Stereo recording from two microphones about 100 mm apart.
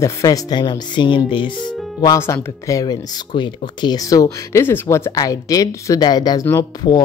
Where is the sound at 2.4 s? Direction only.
35° left (ahead or behind); by 3.6 s 55° left (ahead or behind).